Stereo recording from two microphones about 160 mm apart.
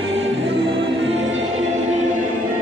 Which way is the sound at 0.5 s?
35° right (ahead or behind).